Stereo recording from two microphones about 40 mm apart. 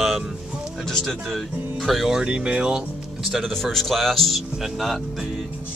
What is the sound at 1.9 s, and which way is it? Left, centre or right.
Speech, centre.